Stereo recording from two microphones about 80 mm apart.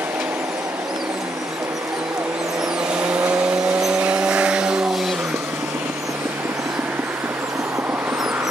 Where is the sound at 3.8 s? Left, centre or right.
Centre.